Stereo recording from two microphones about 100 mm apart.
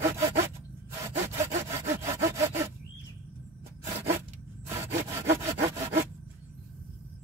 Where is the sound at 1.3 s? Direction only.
30° right (ahead or behind).